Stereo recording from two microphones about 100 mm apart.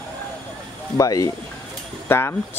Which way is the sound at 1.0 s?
35° left (ahead or behind).